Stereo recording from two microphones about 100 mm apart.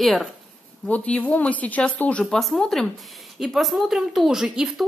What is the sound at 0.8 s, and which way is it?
A woman's voice, 15° left (ahead or behind).